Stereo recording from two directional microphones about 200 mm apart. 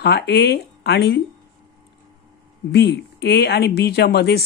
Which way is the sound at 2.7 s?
55° left (ahead or behind).